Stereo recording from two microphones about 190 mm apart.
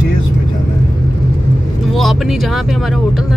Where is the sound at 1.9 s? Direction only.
Centre (ahead or behind).